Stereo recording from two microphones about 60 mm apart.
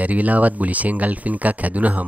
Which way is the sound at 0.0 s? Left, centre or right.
Right.